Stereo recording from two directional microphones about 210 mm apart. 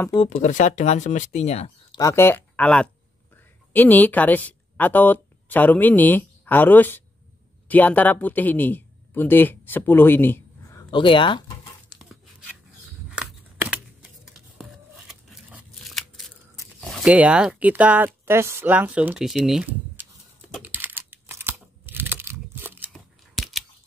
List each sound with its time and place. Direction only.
0.1 s speech: 30° left (ahead or behind)
2.0 s a woman's voice: 15° left (ahead or behind)
13.1 s scissors: 5° right (ahead or behind)
14.6 s tearing: centre (ahead or behind)
16.8 s speech: centre (ahead or behind)
20.5 s a sound: 10° right (ahead or behind)